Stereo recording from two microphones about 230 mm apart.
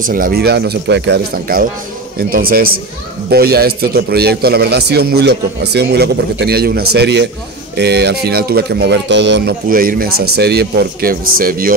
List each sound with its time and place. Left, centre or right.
0.0 s a man's voice: right